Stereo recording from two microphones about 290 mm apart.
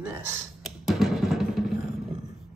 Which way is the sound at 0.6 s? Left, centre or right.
Centre.